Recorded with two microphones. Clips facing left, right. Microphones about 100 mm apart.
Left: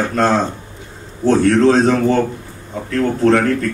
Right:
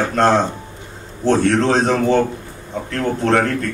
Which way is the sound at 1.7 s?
Centre (ahead or behind).